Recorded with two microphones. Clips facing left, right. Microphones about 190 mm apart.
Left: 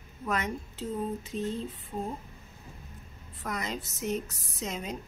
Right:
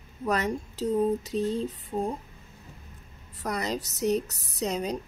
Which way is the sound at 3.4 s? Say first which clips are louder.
Right 5 dB; 35° right (ahead or behind).